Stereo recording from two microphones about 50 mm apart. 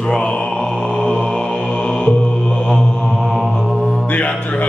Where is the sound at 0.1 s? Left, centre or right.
Centre.